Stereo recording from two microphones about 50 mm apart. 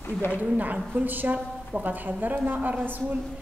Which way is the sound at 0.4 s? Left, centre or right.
Right.